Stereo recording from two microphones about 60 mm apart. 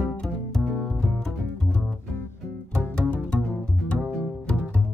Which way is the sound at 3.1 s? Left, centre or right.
Left.